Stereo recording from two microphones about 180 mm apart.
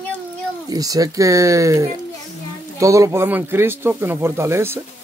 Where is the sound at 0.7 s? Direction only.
20° right (ahead or behind).